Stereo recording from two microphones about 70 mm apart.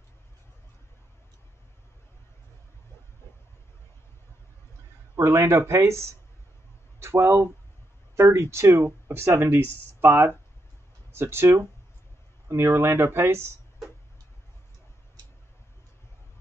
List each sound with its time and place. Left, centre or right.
5.1 s speech: right